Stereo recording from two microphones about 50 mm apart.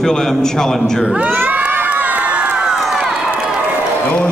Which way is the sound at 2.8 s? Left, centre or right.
Centre.